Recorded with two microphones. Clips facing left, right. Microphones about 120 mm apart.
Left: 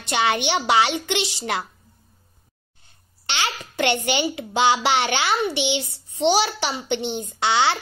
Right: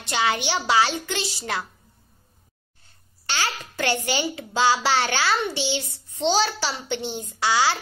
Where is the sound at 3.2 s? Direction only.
20° left (ahead or behind).